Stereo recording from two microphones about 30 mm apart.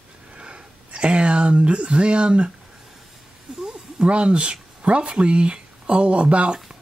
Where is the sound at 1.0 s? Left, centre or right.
Right.